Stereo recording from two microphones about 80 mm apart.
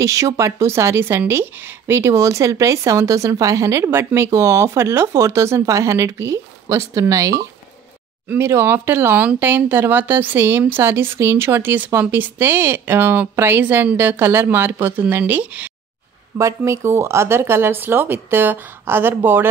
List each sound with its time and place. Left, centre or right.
0.0 s speech: right
8.4 s a woman's voice: right
16.3 s a woman's voice: right